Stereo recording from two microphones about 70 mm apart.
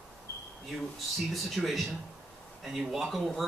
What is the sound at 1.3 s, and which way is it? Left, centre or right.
A man's voice, centre.